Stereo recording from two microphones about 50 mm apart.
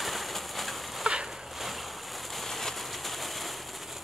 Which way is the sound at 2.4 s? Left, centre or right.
Centre.